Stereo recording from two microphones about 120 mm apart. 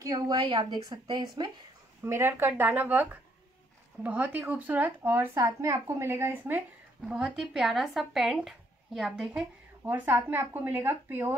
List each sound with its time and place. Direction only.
0.0 s speech: 35° right (ahead or behind)
2.0 s a woman's voice: 20° right (ahead or behind)
7.1 s speech: 5° right (ahead or behind)
9.8 s a woman's voice: 15° right (ahead or behind)